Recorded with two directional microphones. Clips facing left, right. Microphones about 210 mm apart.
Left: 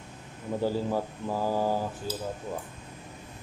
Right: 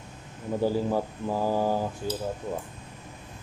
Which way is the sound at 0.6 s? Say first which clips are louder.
Right 3 dB; 15° right (ahead or behind).